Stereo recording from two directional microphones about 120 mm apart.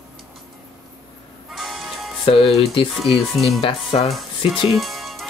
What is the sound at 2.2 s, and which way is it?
Speech, 55° left (ahead or behind).